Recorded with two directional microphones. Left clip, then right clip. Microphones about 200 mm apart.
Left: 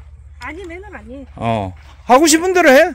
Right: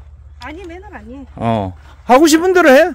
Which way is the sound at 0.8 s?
55° right (ahead or behind).